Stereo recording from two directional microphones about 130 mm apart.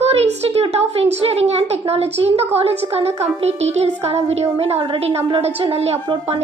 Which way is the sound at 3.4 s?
55° right (ahead or behind).